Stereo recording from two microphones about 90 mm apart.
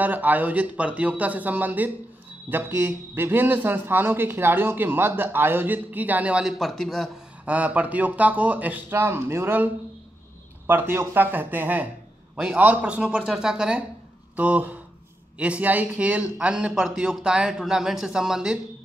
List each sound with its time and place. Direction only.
0.0 s a man's voice: 20° right (ahead or behind)
6.6 s a man's voice: centre (ahead or behind)
7.4 s a man's voice: 15° right (ahead or behind)
10.7 s a man's voice: 20° right (ahead or behind)